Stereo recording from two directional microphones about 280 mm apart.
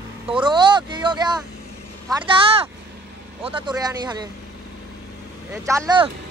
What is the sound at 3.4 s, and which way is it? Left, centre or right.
Speech, centre.